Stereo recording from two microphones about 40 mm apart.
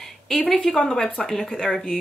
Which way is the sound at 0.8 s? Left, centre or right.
Centre.